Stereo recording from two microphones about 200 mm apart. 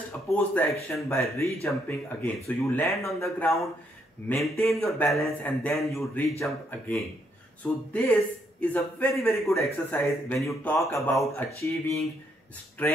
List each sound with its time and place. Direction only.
0.3 s speech: 10° left (ahead or behind)